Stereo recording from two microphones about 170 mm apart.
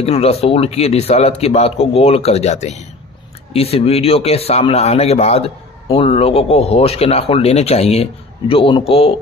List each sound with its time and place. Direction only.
0.0 s speech: 35° left (ahead or behind)